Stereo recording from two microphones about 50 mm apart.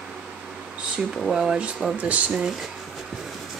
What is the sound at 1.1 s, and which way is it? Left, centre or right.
Speech, centre.